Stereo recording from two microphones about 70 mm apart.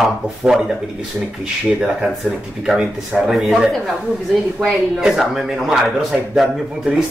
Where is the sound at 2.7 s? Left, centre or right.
Centre.